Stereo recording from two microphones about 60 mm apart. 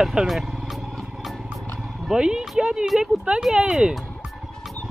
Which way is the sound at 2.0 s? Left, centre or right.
Centre.